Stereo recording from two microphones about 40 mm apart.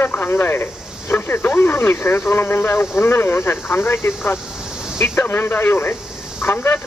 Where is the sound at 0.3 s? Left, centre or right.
Left.